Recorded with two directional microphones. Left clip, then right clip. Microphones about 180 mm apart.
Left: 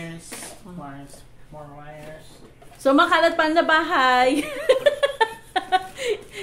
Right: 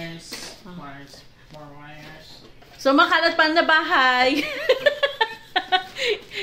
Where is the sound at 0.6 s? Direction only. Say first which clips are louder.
Even; 10° right (ahead or behind).